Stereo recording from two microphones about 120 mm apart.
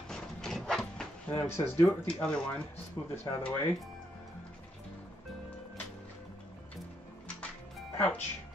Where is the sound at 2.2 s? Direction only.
10° left (ahead or behind).